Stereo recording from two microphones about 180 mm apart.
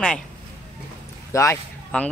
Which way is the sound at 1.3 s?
15° left (ahead or behind).